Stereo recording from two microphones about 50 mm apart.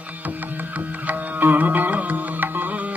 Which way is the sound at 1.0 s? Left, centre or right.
Right.